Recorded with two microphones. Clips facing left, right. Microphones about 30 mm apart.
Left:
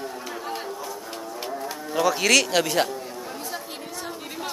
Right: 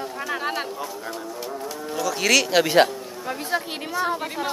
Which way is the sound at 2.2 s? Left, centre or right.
Centre.